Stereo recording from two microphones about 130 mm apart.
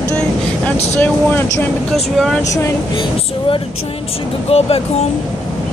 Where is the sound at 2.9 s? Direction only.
40° left (ahead or behind).